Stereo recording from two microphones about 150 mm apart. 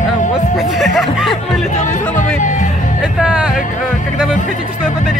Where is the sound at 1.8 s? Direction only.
55° left (ahead or behind).